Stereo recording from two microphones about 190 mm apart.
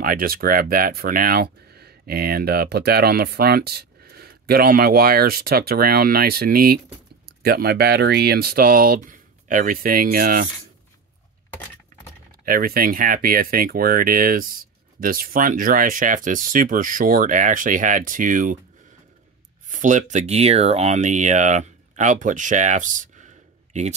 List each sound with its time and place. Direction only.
0.0 s speech: 50° right (ahead or behind)
12.4 s speech: 50° right (ahead or behind)
19.7 s speech: 40° right (ahead or behind)